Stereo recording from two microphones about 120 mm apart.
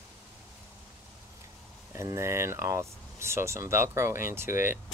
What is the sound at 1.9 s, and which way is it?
Speech, 25° right (ahead or behind).